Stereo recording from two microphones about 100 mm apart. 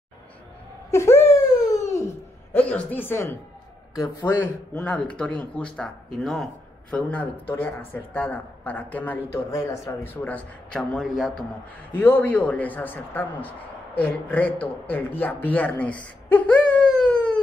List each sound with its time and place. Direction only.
0.8 s speech: 30° left (ahead or behind)
1.3 s wail: 35° left (ahead or behind)
2.5 s speech: 15° left (ahead or behind)
4.4 s a man's voice: 15° left (ahead or behind)
7.0 s a man's voice: 10° left (ahead or behind)
9.5 s speech: 30° left (ahead or behind)
10.0 s a man's voice: 15° left (ahead or behind); by 11.4 s centre (ahead or behind)
11.9 s a man's voice: 20° left (ahead or behind)